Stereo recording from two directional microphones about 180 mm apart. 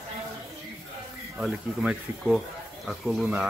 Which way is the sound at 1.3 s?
Centre (ahead or behind).